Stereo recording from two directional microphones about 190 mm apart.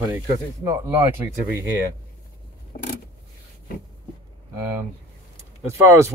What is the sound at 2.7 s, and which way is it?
Vehicle, 45° left (ahead or behind).